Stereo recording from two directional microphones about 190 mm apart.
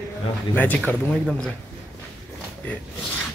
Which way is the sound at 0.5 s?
10° left (ahead or behind).